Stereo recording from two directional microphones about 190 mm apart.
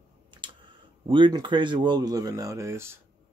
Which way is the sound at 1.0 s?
25° right (ahead or behind).